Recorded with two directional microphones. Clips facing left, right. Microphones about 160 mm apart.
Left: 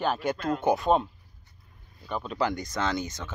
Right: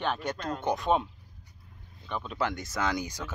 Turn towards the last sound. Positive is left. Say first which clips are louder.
# left 1 dB
turn(degrees=-10)  # may be behind; listen again after turning